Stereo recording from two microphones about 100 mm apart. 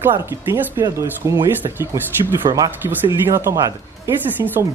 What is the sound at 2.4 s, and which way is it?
Speech, 65° right (ahead or behind).